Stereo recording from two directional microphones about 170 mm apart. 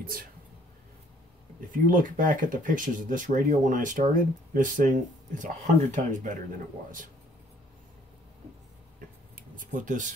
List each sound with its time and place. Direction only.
0.0 s speech: 60° right (ahead or behind)
1.7 s speech: 50° right (ahead or behind)
9.3 s a sound: 50° right (ahead or behind)